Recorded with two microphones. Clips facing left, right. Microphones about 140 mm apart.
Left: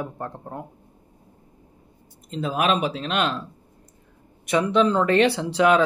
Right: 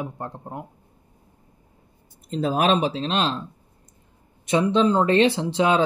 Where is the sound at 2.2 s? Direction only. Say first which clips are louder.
Right 2 dB; 40° right (ahead or behind).